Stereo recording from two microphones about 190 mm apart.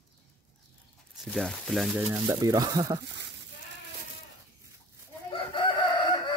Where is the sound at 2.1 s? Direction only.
15° right (ahead or behind).